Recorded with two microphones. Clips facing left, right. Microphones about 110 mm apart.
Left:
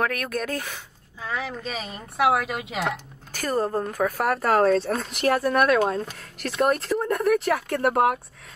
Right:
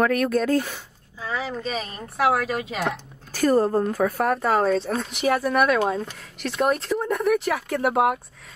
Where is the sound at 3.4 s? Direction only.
15° right (ahead or behind).